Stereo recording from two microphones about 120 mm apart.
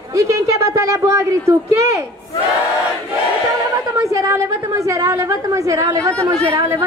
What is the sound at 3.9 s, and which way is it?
A woman's voice, 25° right (ahead or behind).